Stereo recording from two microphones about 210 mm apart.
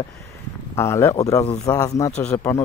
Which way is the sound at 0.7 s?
15° left (ahead or behind).